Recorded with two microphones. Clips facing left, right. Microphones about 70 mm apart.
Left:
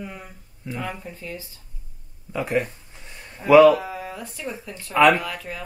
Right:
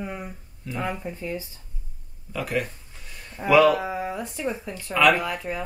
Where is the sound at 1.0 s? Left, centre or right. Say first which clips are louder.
Right 4 dB; centre.